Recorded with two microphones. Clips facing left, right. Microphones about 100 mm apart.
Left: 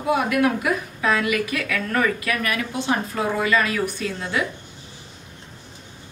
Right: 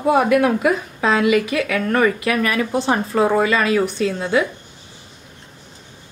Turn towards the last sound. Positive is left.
turn(degrees=-25)  # may be behind; listen again after turning